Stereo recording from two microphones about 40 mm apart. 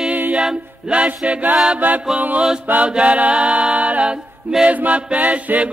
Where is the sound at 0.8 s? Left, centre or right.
Right.